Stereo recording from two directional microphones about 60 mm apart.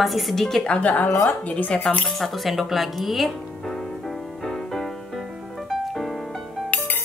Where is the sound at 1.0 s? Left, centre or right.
Left.